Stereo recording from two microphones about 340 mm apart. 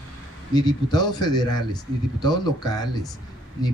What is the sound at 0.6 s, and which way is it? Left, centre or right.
A man's voice, centre.